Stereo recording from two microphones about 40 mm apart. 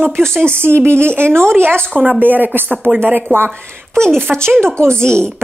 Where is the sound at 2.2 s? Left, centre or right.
Right.